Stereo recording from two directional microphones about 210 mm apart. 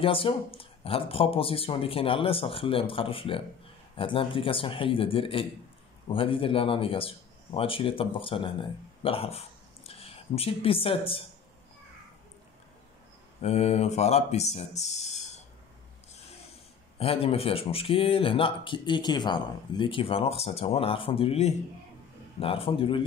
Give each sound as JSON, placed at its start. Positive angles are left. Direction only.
{"t": 0.0, "sound": "speech", "side_deg": 25}
{"t": 13.4, "sound": "speech", "side_deg": 30}
{"t": 17.0, "sound": "speech", "side_deg": 25}